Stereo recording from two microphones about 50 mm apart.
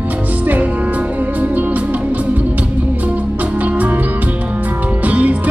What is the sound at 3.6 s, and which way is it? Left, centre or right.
Music, right.